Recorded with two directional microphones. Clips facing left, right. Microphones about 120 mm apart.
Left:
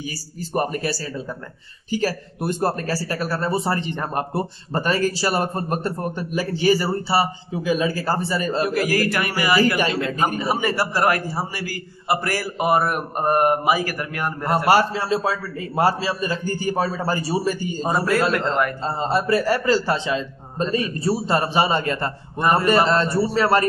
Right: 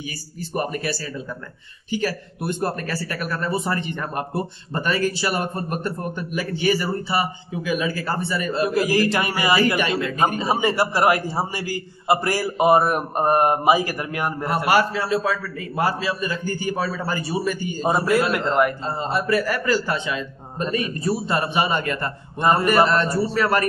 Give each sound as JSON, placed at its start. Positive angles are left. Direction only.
{"t": 0.6, "sound": "speech", "side_deg": 35}
{"t": 8.6, "sound": "a man's voice", "side_deg": -20}
{"t": 9.8, "sound": "speech", "side_deg": 30}
{"t": 10.1, "sound": "a man's voice", "side_deg": -25}
{"t": 14.7, "sound": "speech", "side_deg": 35}
{"t": 17.8, "sound": "a man's voice", "side_deg": -15}
{"t": 18.9, "sound": "speech", "side_deg": 30}
{"t": 22.4, "sound": "a man's voice", "side_deg": -20}
{"t": 22.7, "sound": "speech", "side_deg": 25}